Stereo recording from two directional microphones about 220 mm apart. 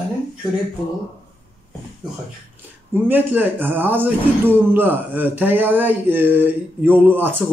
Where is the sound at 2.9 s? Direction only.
10° right (ahead or behind).